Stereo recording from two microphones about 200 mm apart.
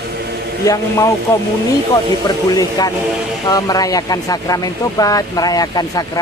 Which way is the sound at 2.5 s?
20° left (ahead or behind).